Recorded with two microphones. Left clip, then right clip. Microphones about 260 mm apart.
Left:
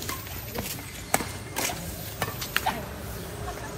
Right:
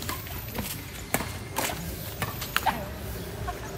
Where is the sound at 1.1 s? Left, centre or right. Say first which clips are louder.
Left 3 dB; centre.